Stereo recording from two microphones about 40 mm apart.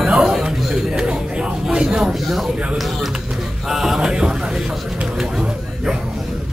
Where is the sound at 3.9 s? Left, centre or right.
Right.